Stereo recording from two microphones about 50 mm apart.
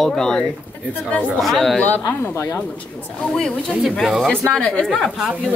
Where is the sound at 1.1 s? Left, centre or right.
Left.